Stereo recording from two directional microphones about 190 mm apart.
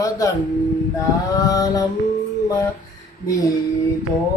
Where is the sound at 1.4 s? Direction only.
20° left (ahead or behind).